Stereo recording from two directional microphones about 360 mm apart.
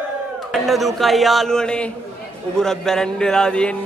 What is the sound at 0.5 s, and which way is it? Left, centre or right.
A man's voice, centre.